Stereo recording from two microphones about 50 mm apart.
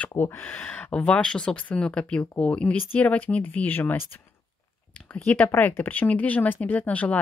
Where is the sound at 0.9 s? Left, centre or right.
Left.